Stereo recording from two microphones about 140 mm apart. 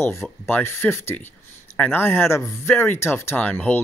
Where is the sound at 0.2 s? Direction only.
15° left (ahead or behind).